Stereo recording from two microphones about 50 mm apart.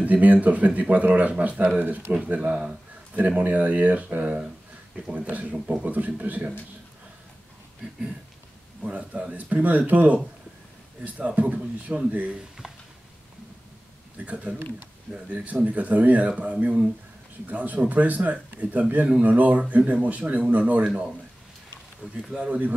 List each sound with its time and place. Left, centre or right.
0.0 s speech: right
5.9 s speech: right
8.8 s speech: right
14.2 s speech: right
20.8 s speech: centre
22.4 s speech: right